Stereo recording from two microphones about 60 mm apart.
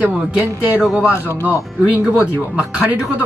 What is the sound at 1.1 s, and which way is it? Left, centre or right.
Speech, left.